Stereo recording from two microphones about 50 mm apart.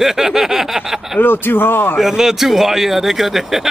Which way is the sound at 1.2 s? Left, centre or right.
Left.